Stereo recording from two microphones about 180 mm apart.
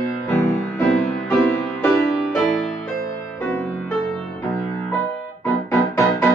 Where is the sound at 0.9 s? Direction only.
5° left (ahead or behind).